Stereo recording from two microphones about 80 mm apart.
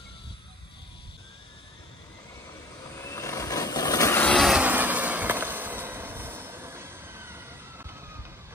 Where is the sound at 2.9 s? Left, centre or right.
Left.